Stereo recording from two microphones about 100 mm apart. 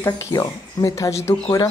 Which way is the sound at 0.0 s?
30° left (ahead or behind).